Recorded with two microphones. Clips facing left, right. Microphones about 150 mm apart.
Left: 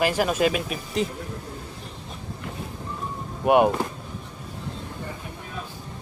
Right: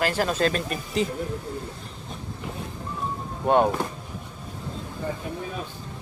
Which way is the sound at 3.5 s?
15° left (ahead or behind).